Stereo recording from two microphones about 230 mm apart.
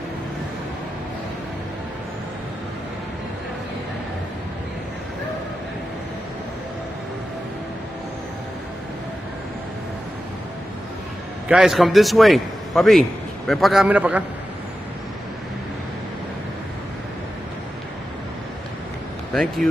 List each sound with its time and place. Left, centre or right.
11.4 s a man's voice: centre
19.3 s a man's voice: centre